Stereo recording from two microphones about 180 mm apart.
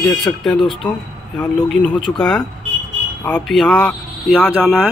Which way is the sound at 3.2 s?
10° left (ahead or behind).